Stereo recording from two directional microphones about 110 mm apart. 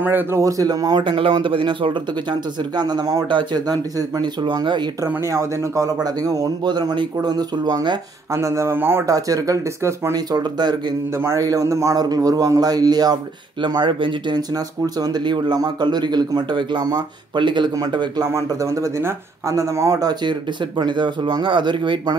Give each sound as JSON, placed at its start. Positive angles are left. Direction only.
{"t": 0.0, "sound": "speech", "side_deg": -20}
{"t": 0.4, "sound": "speech", "side_deg": -30}
{"t": 2.7, "sound": "speech", "side_deg": -40}
{"t": 5.0, "sound": "speech", "side_deg": -25}
{"t": 8.3, "sound": "speech", "side_deg": -25}
{"t": 10.1, "sound": "speech", "side_deg": -40}
{"t": 11.1, "sound": "speech", "side_deg": -30}